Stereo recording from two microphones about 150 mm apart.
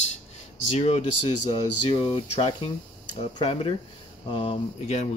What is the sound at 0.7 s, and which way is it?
Speech, 45° left (ahead or behind).